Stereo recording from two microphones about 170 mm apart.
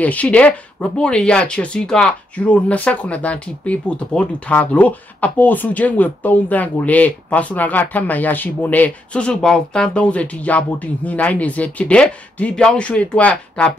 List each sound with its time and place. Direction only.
0.0 s speech: 10° left (ahead or behind)